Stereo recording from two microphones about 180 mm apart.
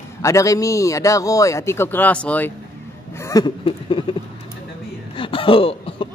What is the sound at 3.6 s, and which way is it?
Speech, 30° left (ahead or behind).